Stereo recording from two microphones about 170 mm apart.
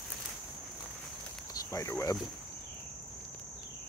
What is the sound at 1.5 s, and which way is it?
Speech, 20° left (ahead or behind).